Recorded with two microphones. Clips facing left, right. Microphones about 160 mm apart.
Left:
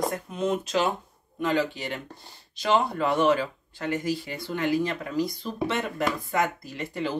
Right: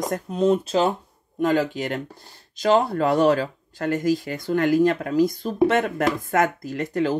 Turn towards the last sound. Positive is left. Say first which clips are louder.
# right 7 dB
turn(degrees=-45)  # may be behind; listen again after turning